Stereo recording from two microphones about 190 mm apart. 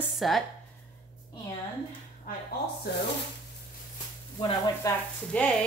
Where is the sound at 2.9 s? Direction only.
60° left (ahead or behind).